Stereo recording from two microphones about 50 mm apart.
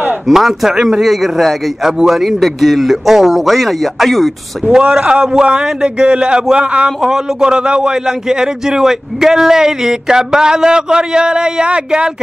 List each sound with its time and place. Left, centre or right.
0.3 s a man's voice: centre
4.9 s a man's voice: centre